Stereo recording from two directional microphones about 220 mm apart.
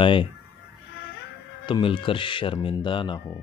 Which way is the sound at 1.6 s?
20° left (ahead or behind).